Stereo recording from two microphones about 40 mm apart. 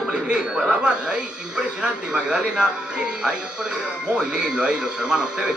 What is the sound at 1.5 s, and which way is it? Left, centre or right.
Speech, right.